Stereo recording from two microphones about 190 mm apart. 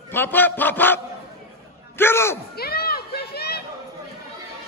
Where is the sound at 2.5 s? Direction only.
55° left (ahead or behind).